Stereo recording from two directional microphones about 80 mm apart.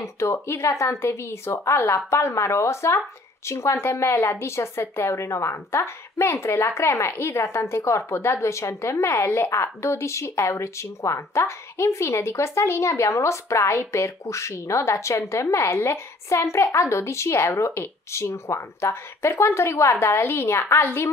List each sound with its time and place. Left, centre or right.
0.0 s a woman's voice: left